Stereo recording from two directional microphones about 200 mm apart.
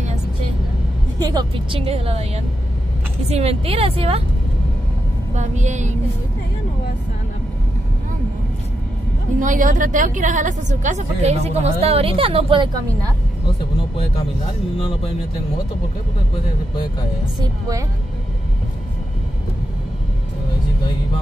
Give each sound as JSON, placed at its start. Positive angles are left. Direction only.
{"t": 1.2, "sound": "a woman's voice", "side_deg": -20}
{"t": 1.8, "sound": "a woman's voice", "side_deg": -30}
{"t": 5.3, "sound": "a woman's voice", "side_deg": -35}
{"t": 9.4, "sound": "a woman's voice", "side_deg": -40}
{"t": 17.4, "sound": "a woman's voice", "side_deg": -15}